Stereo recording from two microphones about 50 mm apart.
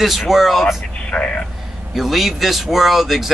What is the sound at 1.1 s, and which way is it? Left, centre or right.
Speech, left.